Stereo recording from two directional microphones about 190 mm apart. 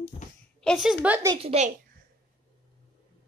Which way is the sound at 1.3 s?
30° right (ahead or behind).